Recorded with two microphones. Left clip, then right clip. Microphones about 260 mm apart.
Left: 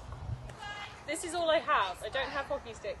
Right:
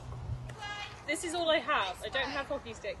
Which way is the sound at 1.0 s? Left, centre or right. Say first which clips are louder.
Even; centre.